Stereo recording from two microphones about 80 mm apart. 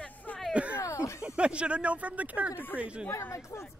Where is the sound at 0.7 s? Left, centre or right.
Left.